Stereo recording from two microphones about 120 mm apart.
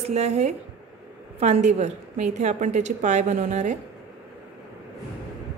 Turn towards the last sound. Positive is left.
turn(degrees=-90)